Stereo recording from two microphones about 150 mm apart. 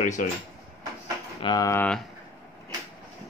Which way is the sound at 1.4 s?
25° left (ahead or behind).